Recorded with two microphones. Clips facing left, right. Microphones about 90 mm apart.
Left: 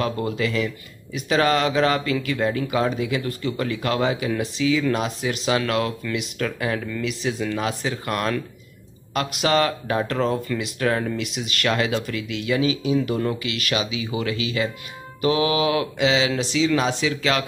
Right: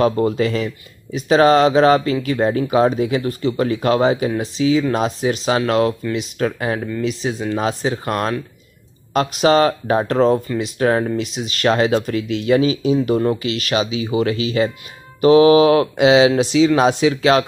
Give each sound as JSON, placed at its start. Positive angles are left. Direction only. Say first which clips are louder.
{"t": 0.0, "sound": "speech", "louder": "right 8 dB", "side_deg": -35}